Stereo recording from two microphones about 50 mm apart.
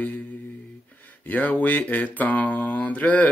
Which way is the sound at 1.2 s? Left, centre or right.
Left.